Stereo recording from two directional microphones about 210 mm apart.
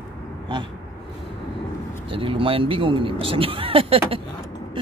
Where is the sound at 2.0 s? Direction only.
25° right (ahead or behind).